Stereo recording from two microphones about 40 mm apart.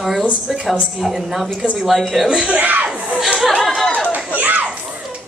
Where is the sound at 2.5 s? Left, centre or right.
Right.